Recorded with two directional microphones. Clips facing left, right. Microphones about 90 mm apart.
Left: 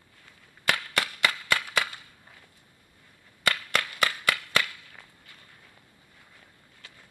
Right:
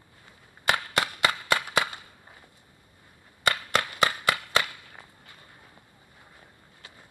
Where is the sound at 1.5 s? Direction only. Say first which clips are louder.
Right 2 dB; 15° right (ahead or behind).